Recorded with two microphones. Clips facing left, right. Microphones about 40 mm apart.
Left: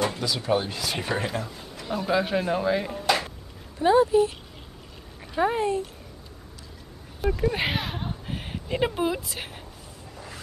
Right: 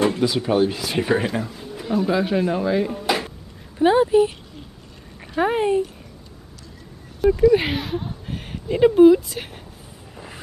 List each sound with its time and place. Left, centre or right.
0.1 s speech: centre
3.1 s a sound: centre
3.8 s speech: right
5.4 s speech: right
7.2 s speech: centre
10.1 s a sound: right